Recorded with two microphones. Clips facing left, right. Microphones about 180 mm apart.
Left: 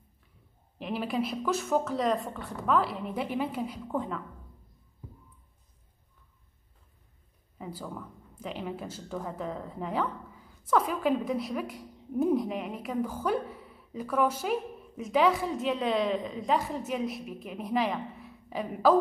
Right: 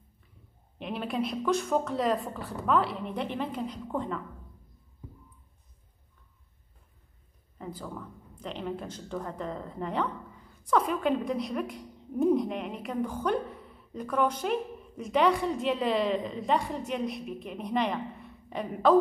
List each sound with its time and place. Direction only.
0.7 s speech: centre (ahead or behind)
7.5 s speech: 5° left (ahead or behind)